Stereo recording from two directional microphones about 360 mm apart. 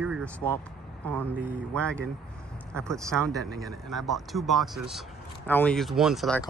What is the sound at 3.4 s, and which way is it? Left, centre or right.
Speech, right.